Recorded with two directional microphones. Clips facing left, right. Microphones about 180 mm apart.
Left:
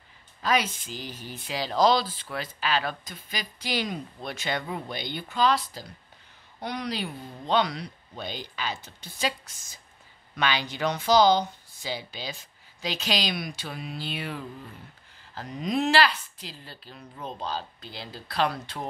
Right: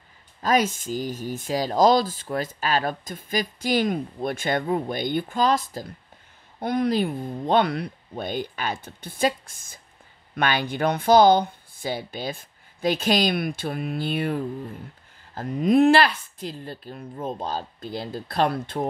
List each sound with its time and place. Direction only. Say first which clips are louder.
0.4 s speech: right 5 dB; 45° right (ahead or behind)